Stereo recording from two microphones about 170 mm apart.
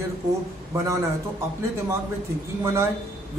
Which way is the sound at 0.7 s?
15° right (ahead or behind).